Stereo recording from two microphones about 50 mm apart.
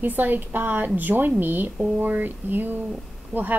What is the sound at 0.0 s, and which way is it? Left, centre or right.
A woman's voice, right.